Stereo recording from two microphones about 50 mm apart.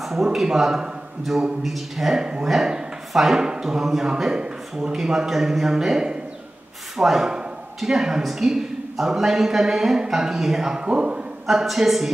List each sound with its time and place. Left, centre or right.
0.0 s a man's voice: centre
2.2 s speech: centre
11.4 s a man's voice: centre